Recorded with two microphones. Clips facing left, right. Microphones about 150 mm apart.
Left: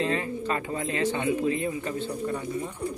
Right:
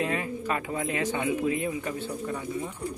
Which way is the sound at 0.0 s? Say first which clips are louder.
Left 2 dB; 10° right (ahead or behind).